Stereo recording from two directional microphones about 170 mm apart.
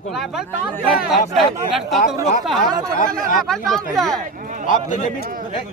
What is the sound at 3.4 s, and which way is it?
Speech, centre (ahead or behind).